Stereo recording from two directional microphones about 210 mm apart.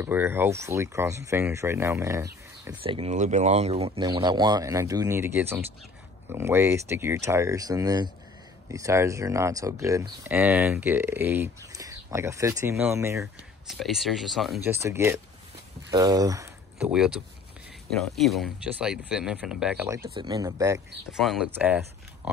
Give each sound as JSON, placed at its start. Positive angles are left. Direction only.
{"t": 0.0, "sound": "speech", "side_deg": -10}
{"t": 2.8, "sound": "speech", "side_deg": -25}
{"t": 13.2, "sound": "speech", "side_deg": 0}
{"t": 14.7, "sound": "speech", "side_deg": -10}
{"t": 16.7, "sound": "speech", "side_deg": -5}
{"t": 20.2, "sound": "speech", "side_deg": -15}
{"t": 21.1, "sound": "speech", "side_deg": 0}